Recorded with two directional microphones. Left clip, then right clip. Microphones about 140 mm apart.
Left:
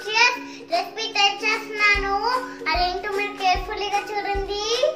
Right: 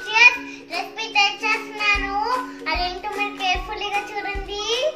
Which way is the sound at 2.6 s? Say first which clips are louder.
Left 3 dB; 15° left (ahead or behind).